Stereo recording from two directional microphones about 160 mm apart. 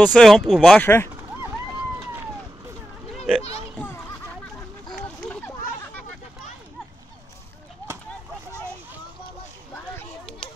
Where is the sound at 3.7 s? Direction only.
10° left (ahead or behind).